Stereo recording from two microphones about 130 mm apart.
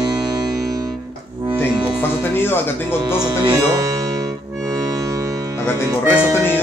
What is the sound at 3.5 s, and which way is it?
Speech, 25° right (ahead or behind).